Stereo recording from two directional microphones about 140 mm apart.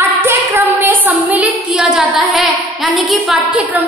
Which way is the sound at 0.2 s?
15° right (ahead or behind).